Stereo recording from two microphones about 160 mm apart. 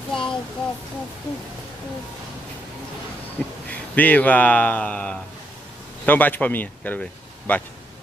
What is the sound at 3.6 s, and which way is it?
Speech, 10° left (ahead or behind).